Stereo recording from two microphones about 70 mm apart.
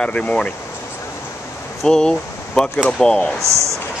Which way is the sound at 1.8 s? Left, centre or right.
Centre.